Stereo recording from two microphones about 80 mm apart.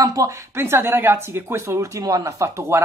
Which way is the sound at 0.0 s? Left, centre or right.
Right.